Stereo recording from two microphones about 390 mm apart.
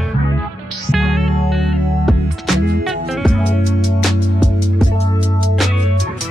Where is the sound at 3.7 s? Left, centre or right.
Left.